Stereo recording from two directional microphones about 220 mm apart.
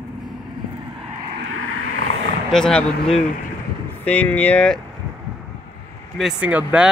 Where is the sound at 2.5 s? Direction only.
Centre (ahead or behind).